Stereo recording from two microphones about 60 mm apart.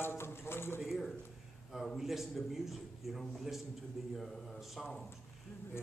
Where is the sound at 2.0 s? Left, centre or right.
Centre.